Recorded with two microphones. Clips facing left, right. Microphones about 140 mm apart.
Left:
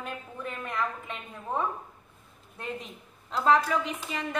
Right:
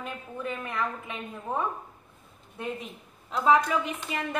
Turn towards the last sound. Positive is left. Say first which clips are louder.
# right 1 dB
turn(degrees=-5)  # may be behind; listen again after turning